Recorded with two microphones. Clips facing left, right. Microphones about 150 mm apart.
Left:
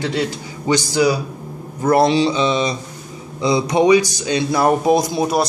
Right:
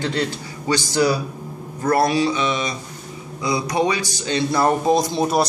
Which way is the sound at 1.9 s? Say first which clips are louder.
Left 4 dB; 25° left (ahead or behind).